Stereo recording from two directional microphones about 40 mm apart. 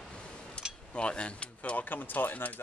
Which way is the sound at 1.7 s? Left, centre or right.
Left.